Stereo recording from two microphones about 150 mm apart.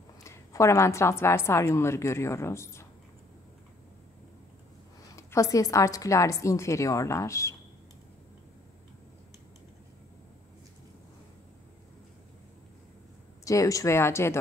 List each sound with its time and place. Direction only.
0.2 s a woman's voice: 20° left (ahead or behind)
5.1 s a woman's voice: 20° left (ahead or behind)
13.5 s speech: 20° left (ahead or behind)